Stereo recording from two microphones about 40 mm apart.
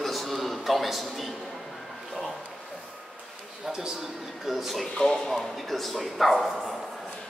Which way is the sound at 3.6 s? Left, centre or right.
Centre.